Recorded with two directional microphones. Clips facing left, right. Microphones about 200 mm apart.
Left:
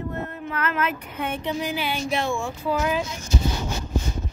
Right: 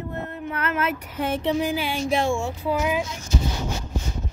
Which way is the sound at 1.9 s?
30° right (ahead or behind).